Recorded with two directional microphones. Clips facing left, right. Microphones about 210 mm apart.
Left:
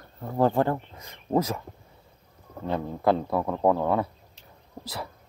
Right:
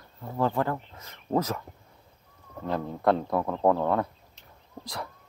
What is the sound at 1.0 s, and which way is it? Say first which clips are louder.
Speech: left 2 dB; 15° left (ahead or behind).